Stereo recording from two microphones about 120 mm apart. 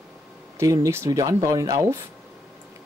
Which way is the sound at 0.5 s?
25° right (ahead or behind).